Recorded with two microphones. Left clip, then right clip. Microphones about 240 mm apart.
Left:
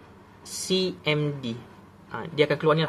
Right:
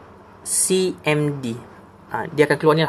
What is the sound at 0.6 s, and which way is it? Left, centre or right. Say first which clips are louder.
Speech: right 6 dB; right.